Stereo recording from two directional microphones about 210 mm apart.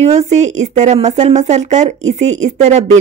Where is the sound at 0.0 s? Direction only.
30° right (ahead or behind).